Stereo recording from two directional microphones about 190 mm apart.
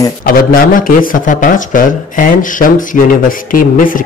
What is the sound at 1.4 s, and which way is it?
Speech, 45° left (ahead or behind).